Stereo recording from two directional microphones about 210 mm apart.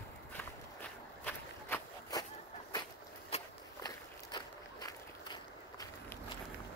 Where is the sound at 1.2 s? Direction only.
15° left (ahead or behind).